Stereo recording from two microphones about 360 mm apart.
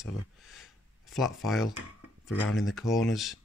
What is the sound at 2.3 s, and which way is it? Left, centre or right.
Speech, left.